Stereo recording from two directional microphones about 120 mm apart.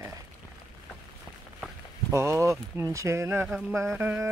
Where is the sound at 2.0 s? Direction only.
25° right (ahead or behind).